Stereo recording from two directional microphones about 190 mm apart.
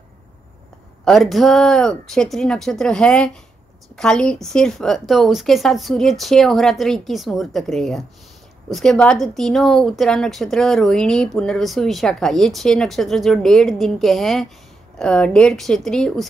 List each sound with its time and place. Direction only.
1.0 s a woman's voice: centre (ahead or behind)